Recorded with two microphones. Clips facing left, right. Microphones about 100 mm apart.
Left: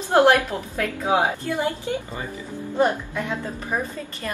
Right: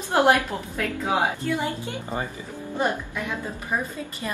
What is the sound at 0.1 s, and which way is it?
Speech, 15° right (ahead or behind).